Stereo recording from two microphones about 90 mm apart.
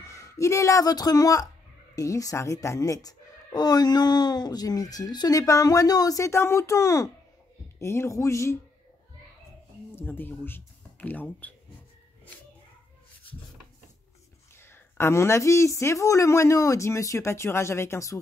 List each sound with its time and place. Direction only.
0.0 s speech: 35° left (ahead or behind)
9.9 s speech: 20° left (ahead or behind)
14.6 s speech: 25° left (ahead or behind)